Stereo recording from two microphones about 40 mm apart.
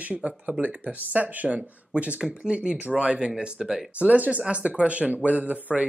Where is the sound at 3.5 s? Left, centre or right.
Centre.